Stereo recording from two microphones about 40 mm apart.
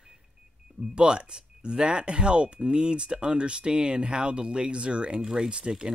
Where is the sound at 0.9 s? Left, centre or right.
Right.